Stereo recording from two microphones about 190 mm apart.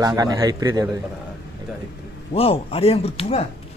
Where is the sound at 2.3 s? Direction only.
30° left (ahead or behind).